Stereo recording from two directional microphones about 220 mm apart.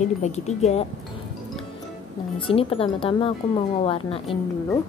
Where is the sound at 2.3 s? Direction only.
25° left (ahead or behind).